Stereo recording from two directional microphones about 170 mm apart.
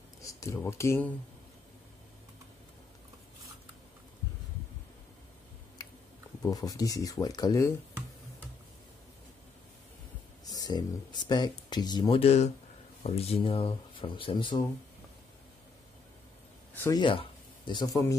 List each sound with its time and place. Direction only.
0.2 s speech: 20° left (ahead or behind)
5.8 s a sound: 20° left (ahead or behind)
6.4 s speech: 20° left (ahead or behind)
10.4 s speech: 20° left (ahead or behind)
16.7 s speech: 15° left (ahead or behind)
17.0 s speech: 30° left (ahead or behind)